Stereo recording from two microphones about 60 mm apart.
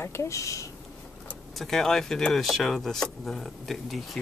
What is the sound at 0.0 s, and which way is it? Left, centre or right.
Speech, left.